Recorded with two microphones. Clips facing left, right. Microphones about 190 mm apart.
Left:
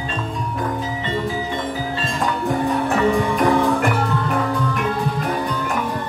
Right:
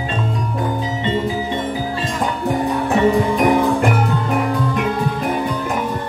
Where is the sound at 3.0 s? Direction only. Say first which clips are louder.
Right 5 dB; 20° right (ahead or behind).